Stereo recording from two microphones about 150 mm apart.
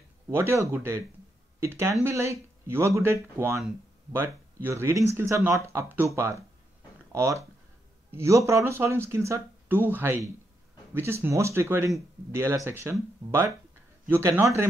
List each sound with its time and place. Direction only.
0.3 s speech: 15° right (ahead or behind)
14.0 s speech: 15° right (ahead or behind)